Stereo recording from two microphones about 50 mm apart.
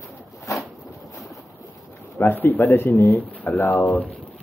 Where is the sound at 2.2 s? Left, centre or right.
Left.